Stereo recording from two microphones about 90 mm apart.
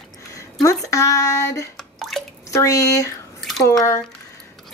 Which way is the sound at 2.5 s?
35° left (ahead or behind).